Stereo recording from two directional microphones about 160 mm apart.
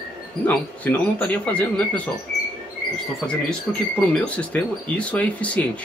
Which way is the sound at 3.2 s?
5° left (ahead or behind).